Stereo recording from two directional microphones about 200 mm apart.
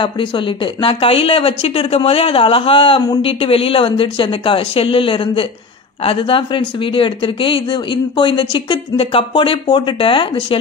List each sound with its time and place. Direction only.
0.8 s speech: 25° left (ahead or behind)